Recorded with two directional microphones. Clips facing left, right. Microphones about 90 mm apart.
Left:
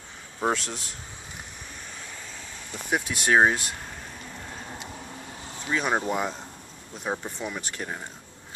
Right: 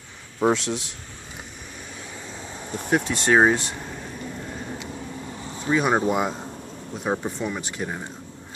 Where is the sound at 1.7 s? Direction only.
5° right (ahead or behind); by 2.8 s 30° right (ahead or behind).